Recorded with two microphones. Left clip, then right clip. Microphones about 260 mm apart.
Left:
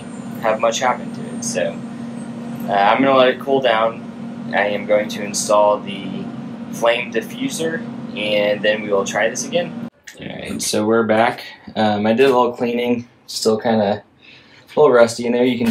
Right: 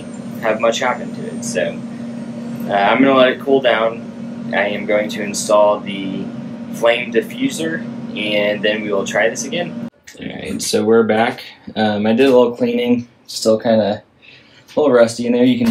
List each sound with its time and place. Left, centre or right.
0.4 s speech: centre
10.7 s speech: centre